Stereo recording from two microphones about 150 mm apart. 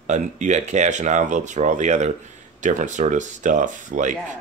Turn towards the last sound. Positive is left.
turn(degrees=-55)  # may be behind; listen again after turning